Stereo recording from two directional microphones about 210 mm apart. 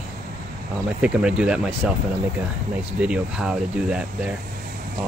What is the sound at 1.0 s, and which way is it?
Speech, 5° right (ahead or behind).